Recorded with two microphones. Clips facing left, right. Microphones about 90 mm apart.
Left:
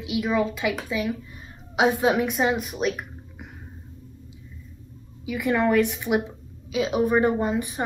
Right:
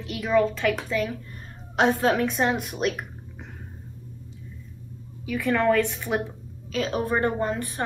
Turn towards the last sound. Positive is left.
turn(degrees=15)  # may be behind; listen again after turning